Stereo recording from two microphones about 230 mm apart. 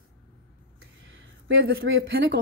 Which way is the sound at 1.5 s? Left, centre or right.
Right.